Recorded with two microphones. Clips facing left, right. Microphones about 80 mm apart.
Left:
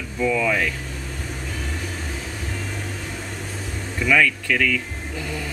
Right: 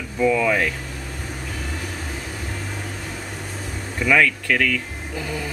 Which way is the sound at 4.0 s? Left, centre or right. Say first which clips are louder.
Right 1 dB; centre.